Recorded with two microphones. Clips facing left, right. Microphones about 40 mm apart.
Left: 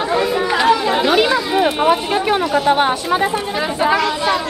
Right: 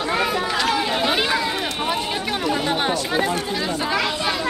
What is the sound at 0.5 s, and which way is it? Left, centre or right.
Chatter, centre.